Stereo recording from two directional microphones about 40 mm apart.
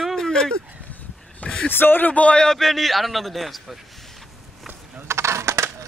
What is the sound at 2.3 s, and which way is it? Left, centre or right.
Speech, centre.